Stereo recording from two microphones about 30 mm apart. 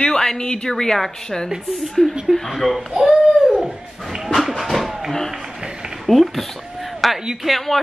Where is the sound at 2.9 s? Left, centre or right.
Right.